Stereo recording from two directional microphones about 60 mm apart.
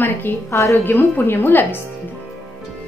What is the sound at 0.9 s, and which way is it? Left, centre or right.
Speech, left.